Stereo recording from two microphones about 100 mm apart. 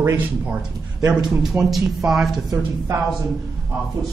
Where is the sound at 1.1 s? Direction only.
5° right (ahead or behind).